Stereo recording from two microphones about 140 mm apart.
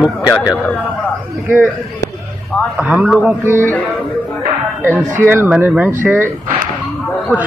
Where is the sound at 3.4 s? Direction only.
20° right (ahead or behind).